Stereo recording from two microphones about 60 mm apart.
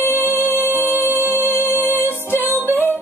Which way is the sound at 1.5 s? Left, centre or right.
Left.